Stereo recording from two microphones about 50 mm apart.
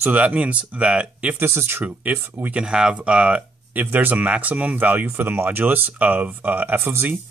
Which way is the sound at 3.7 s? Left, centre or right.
Right.